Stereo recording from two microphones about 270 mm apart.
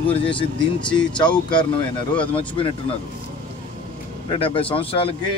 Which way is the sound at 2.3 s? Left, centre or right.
Centre.